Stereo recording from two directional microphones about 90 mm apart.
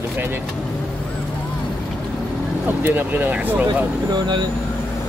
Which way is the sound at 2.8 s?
20° right (ahead or behind).